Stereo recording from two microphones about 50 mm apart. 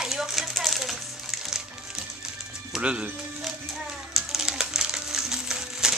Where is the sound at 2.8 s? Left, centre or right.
Right.